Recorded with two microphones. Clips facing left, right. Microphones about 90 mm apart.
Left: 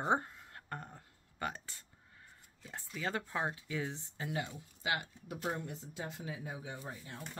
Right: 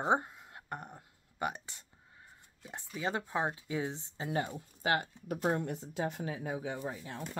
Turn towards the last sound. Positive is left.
turn(degrees=-75)  # may be behind; listen again after turning